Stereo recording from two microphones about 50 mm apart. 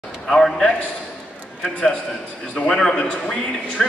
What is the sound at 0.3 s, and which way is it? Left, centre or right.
Speech, centre.